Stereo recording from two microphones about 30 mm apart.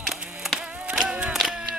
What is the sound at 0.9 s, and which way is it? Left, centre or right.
Insect, right.